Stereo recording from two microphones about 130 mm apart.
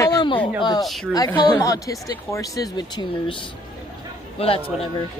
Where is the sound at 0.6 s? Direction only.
35° left (ahead or behind).